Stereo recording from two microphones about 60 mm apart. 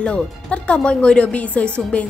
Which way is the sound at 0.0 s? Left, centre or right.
Centre.